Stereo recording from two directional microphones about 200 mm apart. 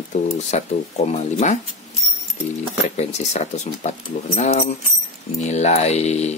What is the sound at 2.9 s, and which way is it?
Speech, 35° left (ahead or behind).